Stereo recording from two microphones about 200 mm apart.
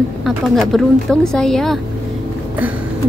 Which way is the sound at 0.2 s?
Centre (ahead or behind).